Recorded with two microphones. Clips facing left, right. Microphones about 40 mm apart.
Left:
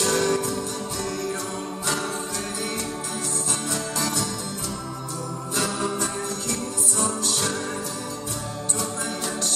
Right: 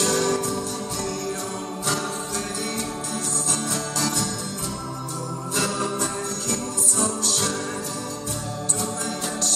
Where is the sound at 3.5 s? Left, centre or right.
Centre.